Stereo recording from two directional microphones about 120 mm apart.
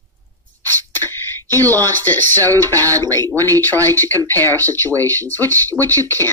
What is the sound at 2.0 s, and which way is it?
Speech, 15° left (ahead or behind).